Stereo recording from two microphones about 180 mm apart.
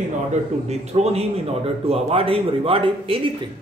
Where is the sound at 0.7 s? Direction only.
35° right (ahead or behind).